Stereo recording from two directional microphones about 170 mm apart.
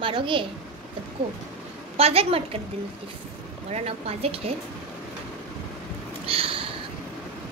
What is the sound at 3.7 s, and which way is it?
Speech, 35° right (ahead or behind).